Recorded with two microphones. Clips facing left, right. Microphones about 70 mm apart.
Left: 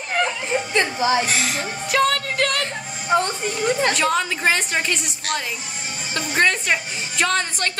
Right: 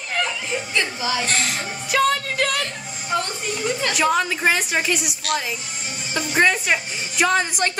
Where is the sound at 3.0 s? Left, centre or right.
Left.